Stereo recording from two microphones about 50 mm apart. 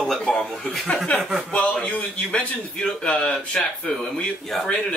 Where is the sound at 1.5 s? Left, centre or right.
Left.